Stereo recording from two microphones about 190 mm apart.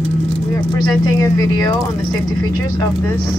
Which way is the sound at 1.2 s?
20° left (ahead or behind).